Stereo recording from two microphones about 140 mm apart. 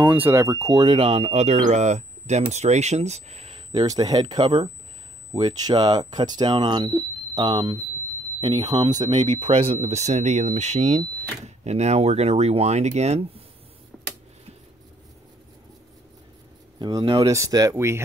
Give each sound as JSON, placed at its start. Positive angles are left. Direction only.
{"t": 0.0, "sound": "speech", "side_deg": -15}
{"t": 13.9, "sound": "a sound", "side_deg": 5}
{"t": 16.8, "sound": "speech", "side_deg": -35}
{"t": 17.2, "sound": "speech", "side_deg": -25}